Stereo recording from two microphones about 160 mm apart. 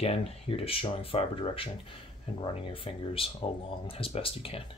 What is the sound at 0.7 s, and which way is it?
Speech, 35° left (ahead or behind).